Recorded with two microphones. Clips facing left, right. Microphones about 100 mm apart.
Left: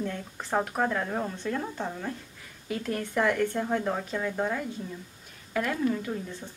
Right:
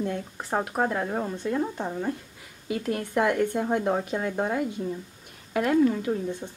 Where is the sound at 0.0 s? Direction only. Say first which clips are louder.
Right 4 dB; 15° right (ahead or behind).